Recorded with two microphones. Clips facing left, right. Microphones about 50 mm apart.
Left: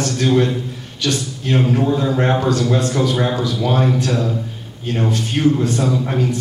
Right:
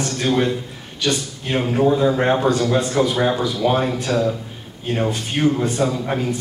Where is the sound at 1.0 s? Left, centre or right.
Right.